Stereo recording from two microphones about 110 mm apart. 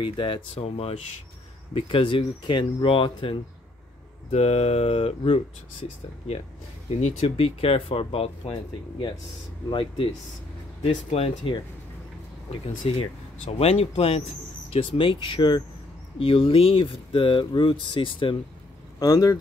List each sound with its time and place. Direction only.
0.0 s speech: 50° left (ahead or behind); by 0.9 s 65° left (ahead or behind)
1.7 s speech: 55° left (ahead or behind)
4.3 s speech: 75° left (ahead or behind)
6.9 s speech: 80° left; by 8.5 s 55° left (ahead or behind)
9.7 s speech: 55° left (ahead or behind)
10.8 s speech: 65° left (ahead or behind)
14.7 s speech: 50° left (ahead or behind)
16.2 s speech: 55° left (ahead or behind)
18.9 s speech: 30° left (ahead or behind)